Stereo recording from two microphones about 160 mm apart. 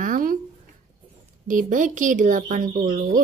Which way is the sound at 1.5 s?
55° right (ahead or behind).